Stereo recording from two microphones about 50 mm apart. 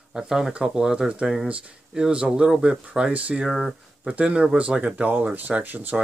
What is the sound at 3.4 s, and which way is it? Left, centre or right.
Speech, centre.